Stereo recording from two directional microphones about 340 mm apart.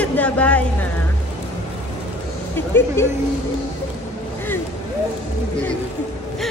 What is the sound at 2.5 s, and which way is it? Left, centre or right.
Speech, centre.